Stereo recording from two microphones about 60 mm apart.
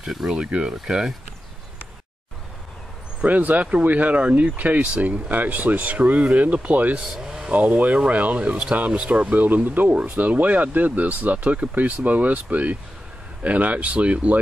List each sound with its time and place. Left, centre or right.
0.0 s speech: centre
0.3 s speech: centre
3.3 s speech: right
7.0 s speech: centre
8.1 s speech: right
9.3 s speech: right